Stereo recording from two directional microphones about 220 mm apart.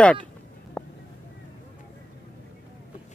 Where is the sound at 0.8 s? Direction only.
5° left (ahead or behind).